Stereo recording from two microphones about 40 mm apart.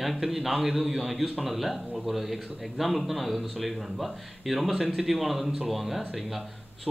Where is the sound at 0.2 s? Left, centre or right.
Centre.